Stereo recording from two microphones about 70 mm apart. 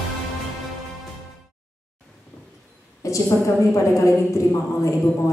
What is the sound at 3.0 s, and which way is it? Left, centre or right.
A woman's voice, left.